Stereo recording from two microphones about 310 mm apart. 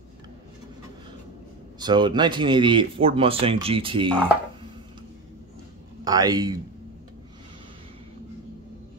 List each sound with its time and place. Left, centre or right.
1.8 s speech: centre
6.0 s speech: centre